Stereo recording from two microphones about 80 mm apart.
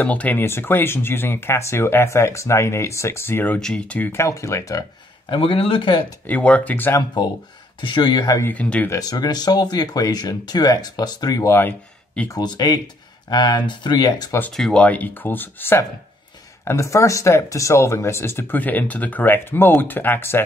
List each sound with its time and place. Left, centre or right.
0.0 s speech: centre
3.5 s speech: centre
4.0 s speech: left
5.3 s speech: left
6.2 s speech: centre
7.8 s speech: left
8.5 s speech: centre
8.9 s speech: left
11.4 s speech: left
12.4 s speech: left
14.5 s speech: centre
14.8 s speech: centre
16.6 s speech: left